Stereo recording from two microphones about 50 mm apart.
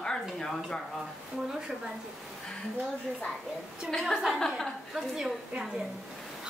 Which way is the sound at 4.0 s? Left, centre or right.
Centre.